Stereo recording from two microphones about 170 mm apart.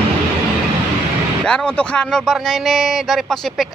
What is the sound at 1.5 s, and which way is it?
Speech, 5° left (ahead or behind).